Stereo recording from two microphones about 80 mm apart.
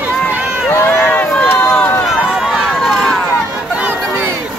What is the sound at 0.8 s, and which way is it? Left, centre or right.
Run, left.